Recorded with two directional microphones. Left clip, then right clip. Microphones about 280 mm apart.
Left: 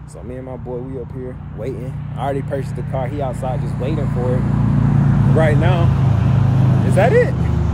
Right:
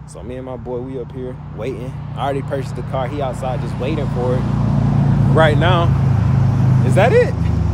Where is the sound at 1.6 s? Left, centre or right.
Centre.